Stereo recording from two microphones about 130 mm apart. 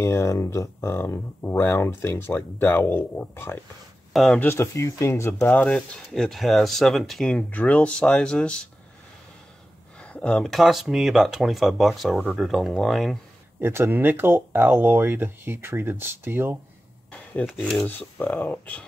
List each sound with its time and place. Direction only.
0.0 s speech: 20° left (ahead or behind)
4.1 s speech: centre (ahead or behind)
4.4 s speech: 20° left (ahead or behind)
5.6 s speech: 5° left (ahead or behind)
10.0 s speech: 10° left (ahead or behind)
13.6 s speech: 15° right (ahead or behind)
17.1 s a sound: 10° left (ahead or behind)
17.5 s speech: 5° right (ahead or behind)
17.7 s speech: 15° left (ahead or behind)